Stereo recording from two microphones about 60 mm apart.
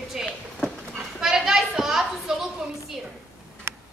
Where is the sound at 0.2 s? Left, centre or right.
Centre.